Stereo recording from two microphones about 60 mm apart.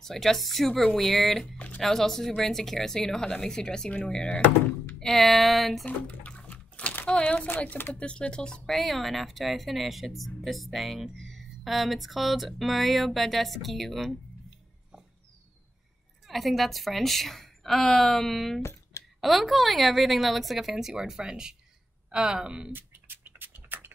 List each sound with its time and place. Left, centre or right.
0.0 s speech: centre
5.0 s speech: centre
5.9 s a sound: left
7.1 s speech: centre
7.4 s speech: left
8.0 s speech: centre
8.7 s speech: centre
16.3 s speech: centre
18.6 s a sound: left
19.2 s speech: centre
22.7 s a sound: right